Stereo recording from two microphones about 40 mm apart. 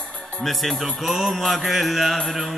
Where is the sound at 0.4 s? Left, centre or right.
Centre.